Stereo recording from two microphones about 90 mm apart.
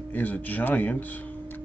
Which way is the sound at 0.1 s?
20° left (ahead or behind).